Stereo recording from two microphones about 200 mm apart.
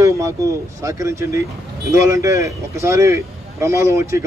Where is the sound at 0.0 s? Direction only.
15° right (ahead or behind).